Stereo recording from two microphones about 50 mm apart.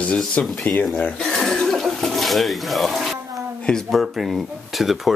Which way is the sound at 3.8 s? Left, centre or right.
Centre.